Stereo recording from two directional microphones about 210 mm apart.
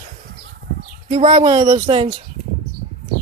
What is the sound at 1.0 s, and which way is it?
Speech, 30° right (ahead or behind).